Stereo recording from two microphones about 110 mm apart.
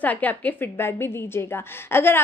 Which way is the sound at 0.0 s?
15° left (ahead or behind).